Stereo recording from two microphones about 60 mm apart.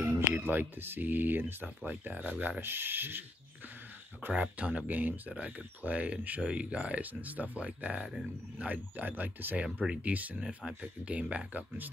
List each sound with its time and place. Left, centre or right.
0.0 s speech: right
2.6 s speech: right
4.3 s speech: right
10.4 s speech: centre
11.1 s speech: right